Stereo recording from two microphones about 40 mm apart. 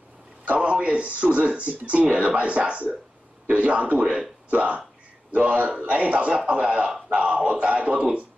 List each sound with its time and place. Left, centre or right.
0.6 s a man's voice: right